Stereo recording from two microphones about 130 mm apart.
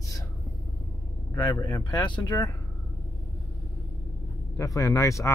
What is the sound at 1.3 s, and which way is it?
Speech, 20° left (ahead or behind).